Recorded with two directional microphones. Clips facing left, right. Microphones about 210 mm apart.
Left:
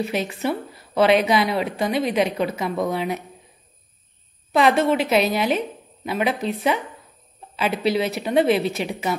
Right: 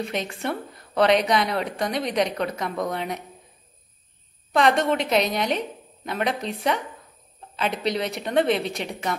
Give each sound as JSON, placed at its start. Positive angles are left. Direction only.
{"t": 0.0, "sound": "a woman's voice", "side_deg": 5}
{"t": 4.5, "sound": "a woman's voice", "side_deg": 5}